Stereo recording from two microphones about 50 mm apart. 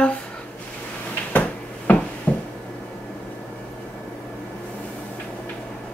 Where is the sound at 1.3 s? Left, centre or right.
Left.